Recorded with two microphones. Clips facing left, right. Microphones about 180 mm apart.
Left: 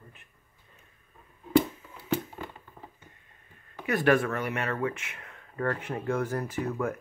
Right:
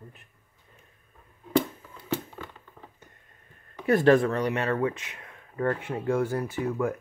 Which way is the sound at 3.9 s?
25° right (ahead or behind).